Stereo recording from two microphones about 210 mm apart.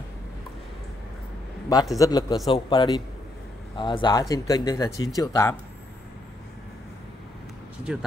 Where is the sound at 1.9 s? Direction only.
15° left (ahead or behind).